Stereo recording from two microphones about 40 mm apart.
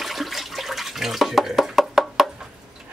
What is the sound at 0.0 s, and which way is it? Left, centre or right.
Water, centre.